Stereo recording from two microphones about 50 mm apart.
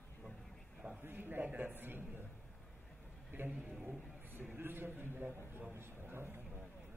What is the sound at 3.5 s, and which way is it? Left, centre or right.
Speech, right.